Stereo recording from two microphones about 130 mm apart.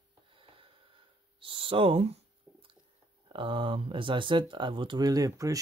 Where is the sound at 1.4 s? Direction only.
40° right (ahead or behind).